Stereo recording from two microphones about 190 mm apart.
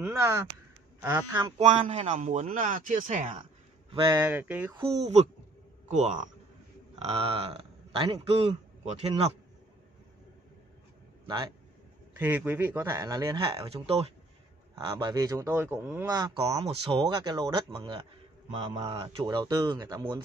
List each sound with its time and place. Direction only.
0.0 s speech: 15° right (ahead or behind)
1.6 s speech: 35° right (ahead or behind)
3.9 s speech: 25° right (ahead or behind)
4.2 s speech: 10° right (ahead or behind)
4.7 s a man's voice: 30° right (ahead or behind)
12.2 s speech: 10° right (ahead or behind); by 14.1 s 35° right (ahead or behind)
14.9 s speech: 20° right (ahead or behind)